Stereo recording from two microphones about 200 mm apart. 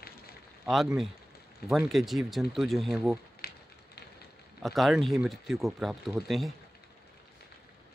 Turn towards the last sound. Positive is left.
turn(degrees=0)  # may be behind; listen again after turning